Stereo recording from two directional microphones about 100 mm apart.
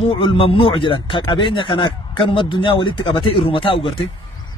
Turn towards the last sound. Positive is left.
turn(degrees=60)  # may be behind; listen again after turning